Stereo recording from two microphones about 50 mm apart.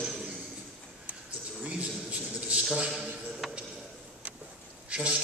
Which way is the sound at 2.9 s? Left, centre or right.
Centre.